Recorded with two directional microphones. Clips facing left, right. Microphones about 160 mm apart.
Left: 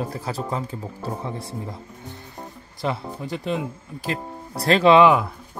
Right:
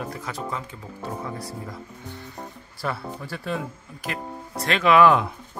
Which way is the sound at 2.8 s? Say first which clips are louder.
Left 3 dB; 20° left (ahead or behind).